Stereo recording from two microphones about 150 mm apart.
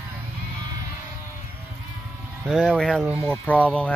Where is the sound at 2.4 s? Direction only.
5° right (ahead or behind).